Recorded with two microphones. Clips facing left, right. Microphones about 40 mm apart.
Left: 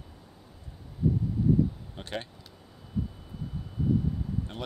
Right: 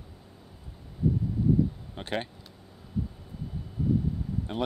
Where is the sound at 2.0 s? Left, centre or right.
Centre.